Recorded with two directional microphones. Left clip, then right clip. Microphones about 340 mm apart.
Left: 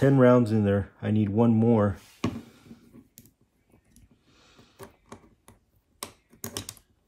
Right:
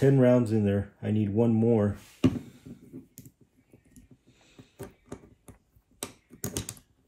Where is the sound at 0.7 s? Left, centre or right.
Left.